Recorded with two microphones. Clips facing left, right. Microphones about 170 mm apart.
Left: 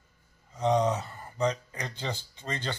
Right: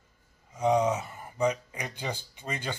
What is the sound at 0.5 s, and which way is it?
Speech, 10° right (ahead or behind).